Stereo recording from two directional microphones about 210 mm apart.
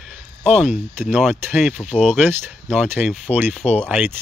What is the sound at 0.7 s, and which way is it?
Speech, 35° left (ahead or behind).